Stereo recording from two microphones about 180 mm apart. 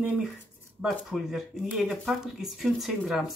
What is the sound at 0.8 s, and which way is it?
Speech, centre (ahead or behind).